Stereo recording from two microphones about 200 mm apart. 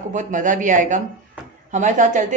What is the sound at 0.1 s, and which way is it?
A man's voice, 40° right (ahead or behind).